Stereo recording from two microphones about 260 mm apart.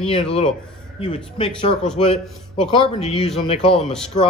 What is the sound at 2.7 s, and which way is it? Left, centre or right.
A man's voice, left.